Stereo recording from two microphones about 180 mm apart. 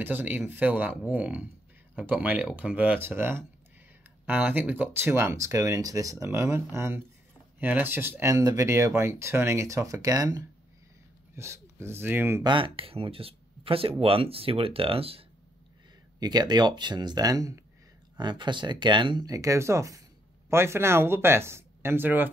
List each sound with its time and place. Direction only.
0.0 s speech: 10° right (ahead or behind)
12.4 s speech: 30° right (ahead or behind); by 22.3 s 10° right (ahead or behind)